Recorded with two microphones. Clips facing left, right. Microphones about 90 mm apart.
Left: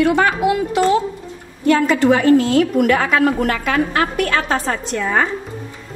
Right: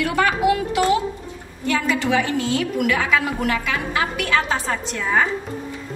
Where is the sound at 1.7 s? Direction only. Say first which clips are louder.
Left 7 dB; 45° left (ahead or behind).